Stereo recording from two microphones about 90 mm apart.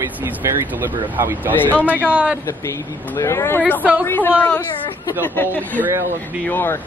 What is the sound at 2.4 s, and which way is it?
A woman's voice, 35° left (ahead or behind).